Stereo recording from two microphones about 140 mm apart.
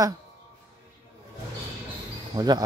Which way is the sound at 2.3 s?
30° right (ahead or behind).